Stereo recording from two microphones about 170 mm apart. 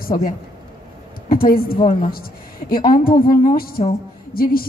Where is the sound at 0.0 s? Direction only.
60° left (ahead or behind).